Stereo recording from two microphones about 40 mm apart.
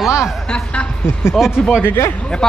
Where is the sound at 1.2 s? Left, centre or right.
Left.